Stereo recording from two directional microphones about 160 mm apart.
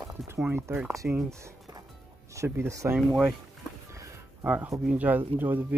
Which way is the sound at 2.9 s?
5° right (ahead or behind).